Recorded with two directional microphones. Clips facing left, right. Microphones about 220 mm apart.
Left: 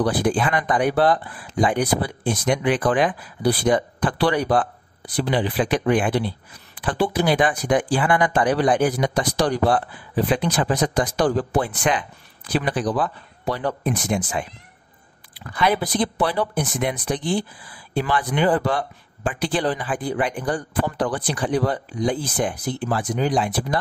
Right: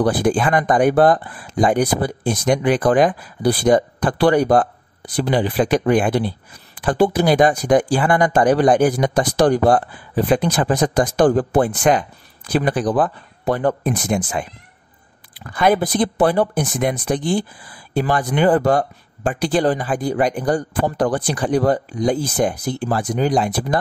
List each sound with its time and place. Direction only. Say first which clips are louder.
0.0 s speech: right 3 dB; 45° right (ahead or behind)